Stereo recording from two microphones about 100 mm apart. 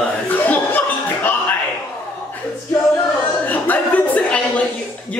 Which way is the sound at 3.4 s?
15° left (ahead or behind).